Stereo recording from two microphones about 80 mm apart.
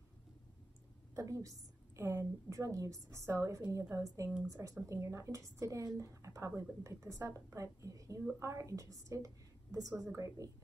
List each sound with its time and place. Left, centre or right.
1.1 s a woman's voice: right